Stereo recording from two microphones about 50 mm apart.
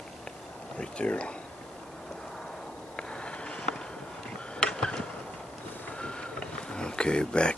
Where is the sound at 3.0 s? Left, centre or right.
Left.